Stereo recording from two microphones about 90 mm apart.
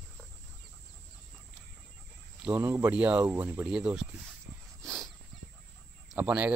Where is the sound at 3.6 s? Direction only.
10° right (ahead or behind).